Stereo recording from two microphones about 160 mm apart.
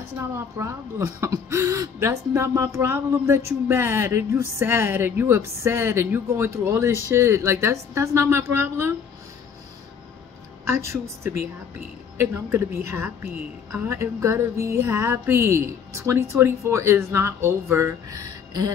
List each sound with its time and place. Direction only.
0.6 s speech: 15° right (ahead or behind)
10.6 s speech: 15° right (ahead or behind)